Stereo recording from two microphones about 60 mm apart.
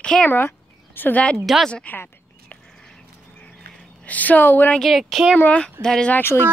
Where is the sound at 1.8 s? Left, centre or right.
Left.